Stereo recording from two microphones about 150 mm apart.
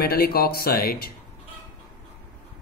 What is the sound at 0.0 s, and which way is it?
Speech, 90° left.